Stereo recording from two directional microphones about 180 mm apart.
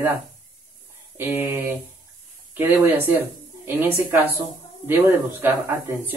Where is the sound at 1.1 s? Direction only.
10° right (ahead or behind).